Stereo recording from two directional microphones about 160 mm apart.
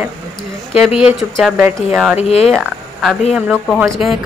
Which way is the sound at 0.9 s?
35° left (ahead or behind).